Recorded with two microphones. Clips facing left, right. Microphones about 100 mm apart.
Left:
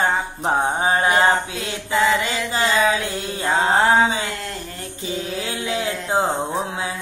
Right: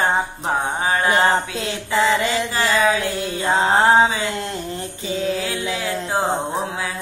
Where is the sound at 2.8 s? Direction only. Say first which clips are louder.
Right 1 dB; 25° right (ahead or behind).